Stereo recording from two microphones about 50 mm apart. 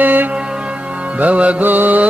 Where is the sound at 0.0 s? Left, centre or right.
Right.